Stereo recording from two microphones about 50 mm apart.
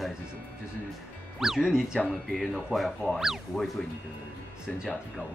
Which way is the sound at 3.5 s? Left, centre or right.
Centre.